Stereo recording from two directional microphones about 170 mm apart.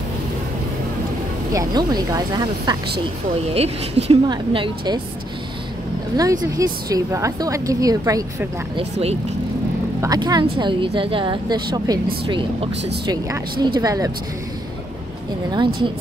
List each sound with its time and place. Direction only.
1.5 s a woman's voice: 20° right (ahead or behind)
3.5 s speech: 35° right (ahead or behind)
4.3 s a woman's voice: 25° right (ahead or behind)
6.5 s a woman's voice: 20° right (ahead or behind)
10.0 s a woman's voice: 25° right (ahead or behind)
15.5 s a woman's voice: 30° right (ahead or behind)